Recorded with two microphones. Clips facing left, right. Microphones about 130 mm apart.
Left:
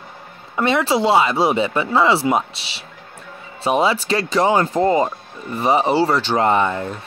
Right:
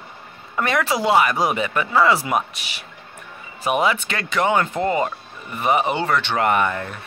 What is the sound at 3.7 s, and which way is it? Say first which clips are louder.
Speech: left 3 dB; 30° left (ahead or behind).